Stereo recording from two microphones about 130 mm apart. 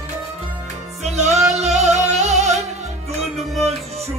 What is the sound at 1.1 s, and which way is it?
Music, centre (ahead or behind).